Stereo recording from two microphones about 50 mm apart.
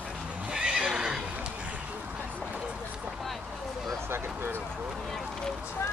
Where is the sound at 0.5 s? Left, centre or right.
Centre.